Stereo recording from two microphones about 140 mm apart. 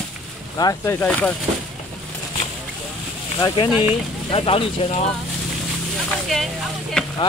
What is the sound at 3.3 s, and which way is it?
Speech, 30° left (ahead or behind).